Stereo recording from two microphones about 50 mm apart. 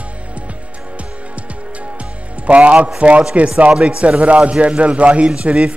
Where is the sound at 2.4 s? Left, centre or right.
Right.